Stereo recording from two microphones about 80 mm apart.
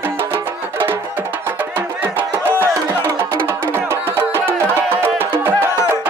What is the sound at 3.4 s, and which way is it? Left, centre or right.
Music, right.